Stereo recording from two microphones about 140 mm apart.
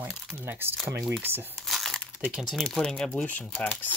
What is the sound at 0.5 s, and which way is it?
Speech, 15° right (ahead or behind).